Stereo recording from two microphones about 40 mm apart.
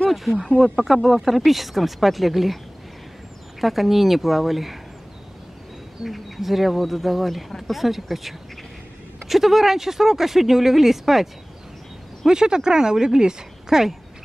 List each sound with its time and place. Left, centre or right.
0.1 s a sound: centre
0.6 s speech: centre
3.6 s speech: centre
6.0 s speech: centre
12.3 s speech: centre